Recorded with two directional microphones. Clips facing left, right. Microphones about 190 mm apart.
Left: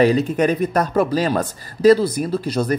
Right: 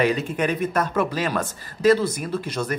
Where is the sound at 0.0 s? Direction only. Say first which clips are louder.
Left 6 dB; 35° left (ahead or behind).